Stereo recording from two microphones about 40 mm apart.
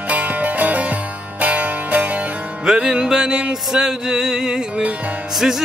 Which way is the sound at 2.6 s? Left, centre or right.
Centre.